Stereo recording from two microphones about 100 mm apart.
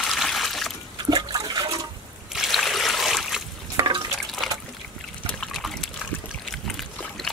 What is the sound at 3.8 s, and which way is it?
Water, 30° right (ahead or behind).